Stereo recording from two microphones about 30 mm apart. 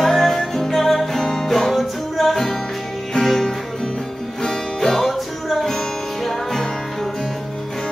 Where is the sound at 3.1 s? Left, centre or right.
Centre.